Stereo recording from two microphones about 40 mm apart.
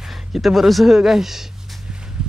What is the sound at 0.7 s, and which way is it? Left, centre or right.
Speech, centre.